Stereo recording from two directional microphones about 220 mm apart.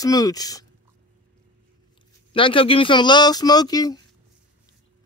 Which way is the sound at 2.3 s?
25° left (ahead or behind).